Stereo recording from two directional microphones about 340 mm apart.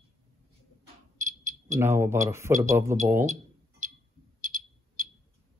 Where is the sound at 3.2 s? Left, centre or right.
Right.